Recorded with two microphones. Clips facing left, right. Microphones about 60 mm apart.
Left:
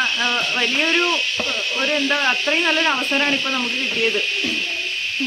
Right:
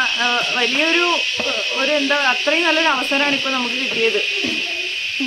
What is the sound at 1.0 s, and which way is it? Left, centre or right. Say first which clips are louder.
Speech: right 2 dB; right.